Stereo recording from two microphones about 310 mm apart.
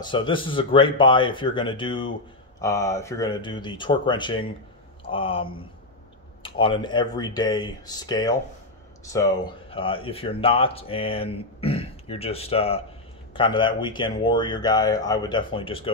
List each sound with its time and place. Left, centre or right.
0.0 s speech: centre